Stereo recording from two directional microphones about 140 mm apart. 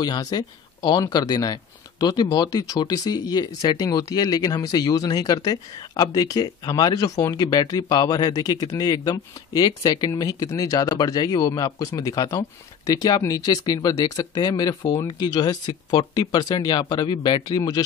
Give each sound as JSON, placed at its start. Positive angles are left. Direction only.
{"t": 0.0, "sound": "speech", "side_deg": 25}